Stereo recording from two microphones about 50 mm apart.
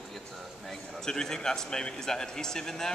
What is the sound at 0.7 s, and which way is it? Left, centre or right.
A man's voice, centre.